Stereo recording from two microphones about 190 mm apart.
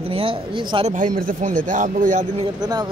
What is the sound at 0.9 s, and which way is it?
A man's voice, 45° right (ahead or behind).